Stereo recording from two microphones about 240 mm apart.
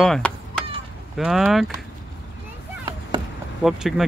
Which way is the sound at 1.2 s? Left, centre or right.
Centre.